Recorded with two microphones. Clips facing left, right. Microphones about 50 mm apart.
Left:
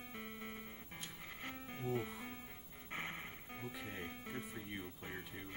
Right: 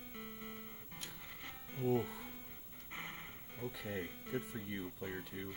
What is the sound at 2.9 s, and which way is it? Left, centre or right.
Music, left.